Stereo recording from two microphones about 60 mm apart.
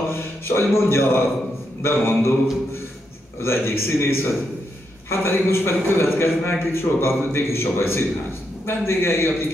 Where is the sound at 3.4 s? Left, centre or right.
Left.